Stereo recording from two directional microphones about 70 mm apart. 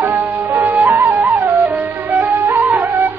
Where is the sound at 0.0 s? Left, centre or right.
Right.